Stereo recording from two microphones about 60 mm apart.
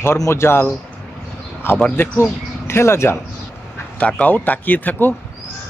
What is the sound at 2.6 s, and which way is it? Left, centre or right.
Speech, left.